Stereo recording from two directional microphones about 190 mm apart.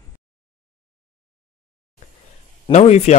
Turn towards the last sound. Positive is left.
turn(degrees=35)  # may be behind; listen again after turning